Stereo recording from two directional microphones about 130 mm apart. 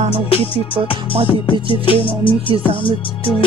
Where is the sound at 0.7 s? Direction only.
45° right (ahead or behind).